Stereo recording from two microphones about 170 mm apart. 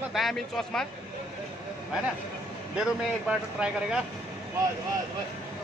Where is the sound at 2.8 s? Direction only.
5° right (ahead or behind).